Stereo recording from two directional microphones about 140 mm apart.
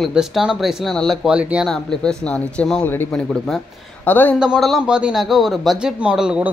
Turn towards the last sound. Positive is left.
turn(degrees=-5)  # may be behind; listen again after turning